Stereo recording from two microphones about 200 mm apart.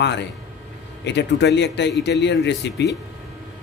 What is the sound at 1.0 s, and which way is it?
Speech, 60° left (ahead or behind).